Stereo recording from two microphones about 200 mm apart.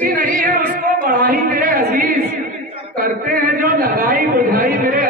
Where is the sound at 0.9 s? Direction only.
45° right (ahead or behind).